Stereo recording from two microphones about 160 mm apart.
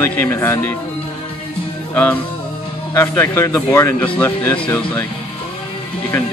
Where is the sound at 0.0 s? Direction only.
15° left (ahead or behind).